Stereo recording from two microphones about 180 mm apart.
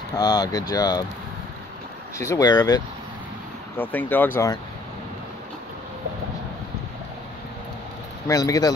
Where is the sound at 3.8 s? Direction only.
10° left (ahead or behind).